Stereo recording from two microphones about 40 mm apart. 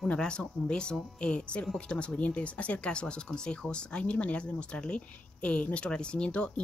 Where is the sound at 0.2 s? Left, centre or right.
Centre.